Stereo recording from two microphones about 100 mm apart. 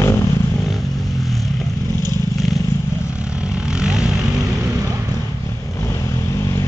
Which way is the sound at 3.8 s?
5° right (ahead or behind).